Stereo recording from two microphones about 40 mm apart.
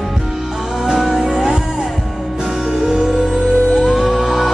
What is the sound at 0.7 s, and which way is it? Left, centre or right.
Music, centre.